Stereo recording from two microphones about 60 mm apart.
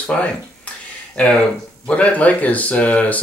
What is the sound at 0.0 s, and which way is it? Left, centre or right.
Speech, left.